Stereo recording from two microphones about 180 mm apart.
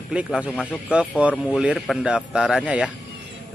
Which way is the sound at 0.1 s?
5° right (ahead or behind).